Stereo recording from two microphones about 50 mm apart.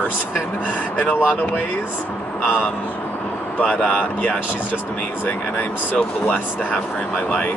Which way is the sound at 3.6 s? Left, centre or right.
Centre.